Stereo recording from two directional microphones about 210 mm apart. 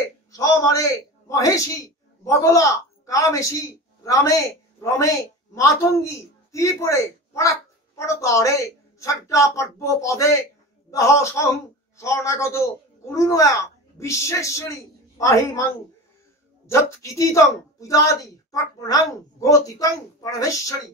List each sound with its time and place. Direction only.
0.0 s a man's voice: 15° left (ahead or behind)